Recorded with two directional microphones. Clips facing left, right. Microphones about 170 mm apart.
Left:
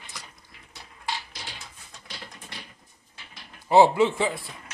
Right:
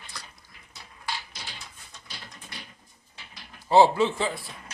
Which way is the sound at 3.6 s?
15° left (ahead or behind).